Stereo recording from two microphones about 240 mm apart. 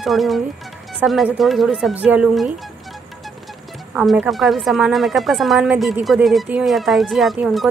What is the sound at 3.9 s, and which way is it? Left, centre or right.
A woman's voice, centre.